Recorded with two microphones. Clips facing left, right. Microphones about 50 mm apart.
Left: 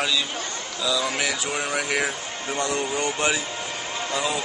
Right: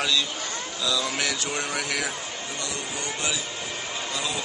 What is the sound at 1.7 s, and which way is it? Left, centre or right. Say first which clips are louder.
Speech: left 6 dB; left.